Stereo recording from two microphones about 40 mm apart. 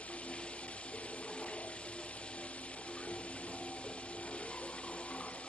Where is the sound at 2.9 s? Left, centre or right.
Left.